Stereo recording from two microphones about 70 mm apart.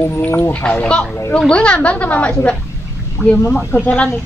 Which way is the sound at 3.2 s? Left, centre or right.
Centre.